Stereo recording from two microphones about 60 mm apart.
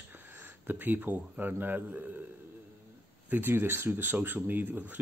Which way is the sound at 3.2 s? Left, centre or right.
Right.